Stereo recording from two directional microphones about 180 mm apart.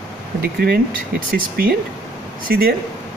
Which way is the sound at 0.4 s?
60° right (ahead or behind).